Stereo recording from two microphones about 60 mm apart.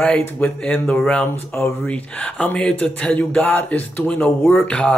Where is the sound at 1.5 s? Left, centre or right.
Left.